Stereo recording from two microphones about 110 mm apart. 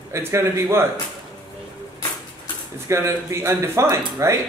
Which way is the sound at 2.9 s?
25° right (ahead or behind).